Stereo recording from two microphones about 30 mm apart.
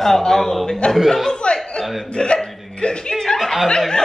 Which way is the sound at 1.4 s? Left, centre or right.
Left.